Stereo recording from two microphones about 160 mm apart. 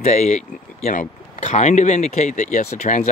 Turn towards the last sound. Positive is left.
turn(degrees=50)  # may be behind; listen again after turning